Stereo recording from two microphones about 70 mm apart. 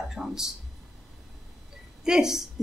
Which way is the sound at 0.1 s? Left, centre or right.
Centre.